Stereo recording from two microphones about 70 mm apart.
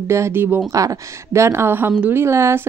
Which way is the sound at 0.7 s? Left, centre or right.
Right.